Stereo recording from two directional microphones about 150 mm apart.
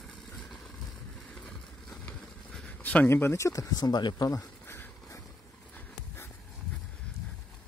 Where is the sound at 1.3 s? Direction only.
5° left (ahead or behind).